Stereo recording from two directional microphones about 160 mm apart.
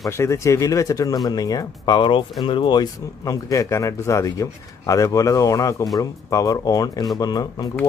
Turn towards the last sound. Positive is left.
turn(degrees=25)  # may be behind; listen again after turning